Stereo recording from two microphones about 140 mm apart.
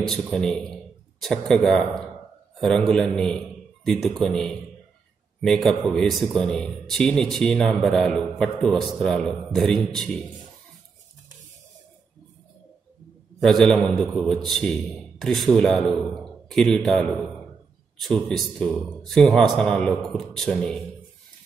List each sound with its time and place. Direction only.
0.1 s speech: centre (ahead or behind)
2.9 s a man's voice: 5° left (ahead or behind)
13.4 s speech: centre (ahead or behind)